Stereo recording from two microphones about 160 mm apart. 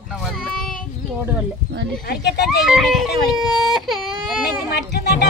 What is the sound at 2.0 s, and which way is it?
Speech, 90° left.